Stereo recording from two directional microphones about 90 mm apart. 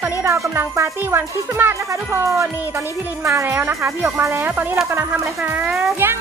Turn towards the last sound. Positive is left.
turn(degrees=-25)  # may be behind; listen again after turning